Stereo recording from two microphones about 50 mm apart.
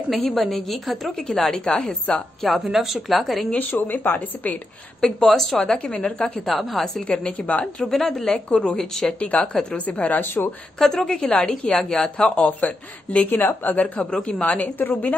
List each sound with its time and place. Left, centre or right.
0.1 s a woman's voice: centre
2.5 s a woman's voice: centre
3.5 s speech: left
5.0 s a woman's voice: centre
5.9 s a woman's voice: left
6.4 s a woman's voice: centre
7.1 s a woman's voice: left
7.9 s a woman's voice: centre
9.8 s a woman's voice: left
10.8 s a woman's voice: centre
13.3 s a woman's voice: left